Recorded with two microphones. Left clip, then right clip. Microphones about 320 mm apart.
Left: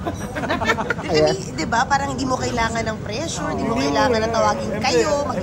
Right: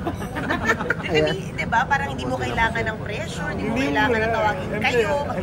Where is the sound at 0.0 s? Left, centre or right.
Centre.